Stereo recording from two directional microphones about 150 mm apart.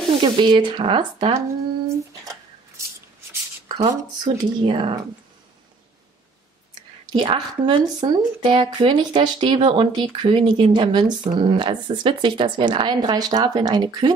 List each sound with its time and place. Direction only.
0.1 s speech: 30° right (ahead or behind)
3.6 s a sound: 35° right (ahead or behind)
4.2 s speech: 30° right (ahead or behind)
7.1 s speech: 30° right (ahead or behind)